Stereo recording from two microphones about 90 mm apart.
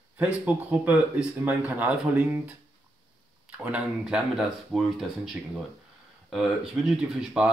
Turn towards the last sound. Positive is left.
turn(degrees=-10)  # may be behind; listen again after turning